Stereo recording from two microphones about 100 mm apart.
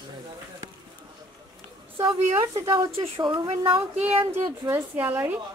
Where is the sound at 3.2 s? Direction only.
50° right (ahead or behind).